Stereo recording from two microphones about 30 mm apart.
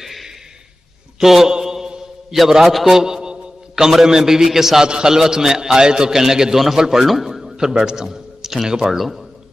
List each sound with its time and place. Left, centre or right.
0.0 s a sound: centre
1.2 s a man's voice: centre
1.5 s mantra: centre
2.6 s a sound: centre
4.2 s a man's voice: centre
4.8 s speech: right
5.1 s a man's voice: centre
7.5 s a man's voice: right
8.9 s a man's voice: centre